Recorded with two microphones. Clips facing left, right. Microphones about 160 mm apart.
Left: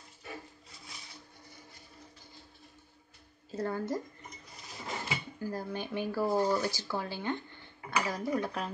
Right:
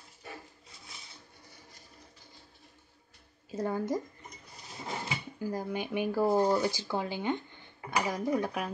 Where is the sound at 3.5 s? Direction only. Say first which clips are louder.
Right 2 dB; 15° right (ahead or behind).